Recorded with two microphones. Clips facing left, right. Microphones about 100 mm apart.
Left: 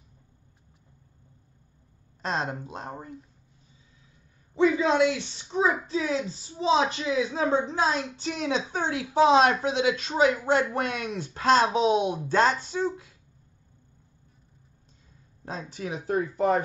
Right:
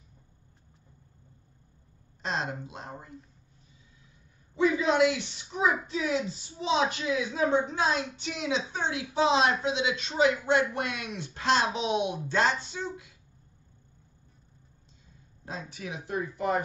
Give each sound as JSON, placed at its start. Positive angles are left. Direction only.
{"t": 2.2, "sound": "speech", "side_deg": 40}
{"t": 4.6, "sound": "a woman's voice", "side_deg": 35}
{"t": 15.4, "sound": "a woman's voice", "side_deg": 40}